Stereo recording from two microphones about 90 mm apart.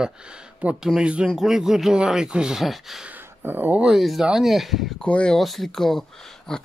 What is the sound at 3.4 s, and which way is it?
Speech, 20° right (ahead or behind).